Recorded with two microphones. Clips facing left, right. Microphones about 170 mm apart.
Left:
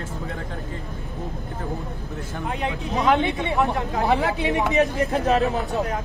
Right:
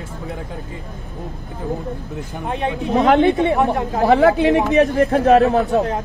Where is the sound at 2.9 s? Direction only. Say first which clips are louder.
Right 6 dB; 65° right (ahead or behind).